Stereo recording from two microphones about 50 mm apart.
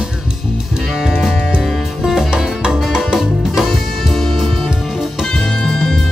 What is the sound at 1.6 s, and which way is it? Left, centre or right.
Music, centre.